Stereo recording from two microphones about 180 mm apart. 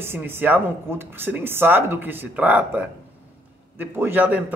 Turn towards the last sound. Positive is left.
turn(degrees=-10)  # may be behind; listen again after turning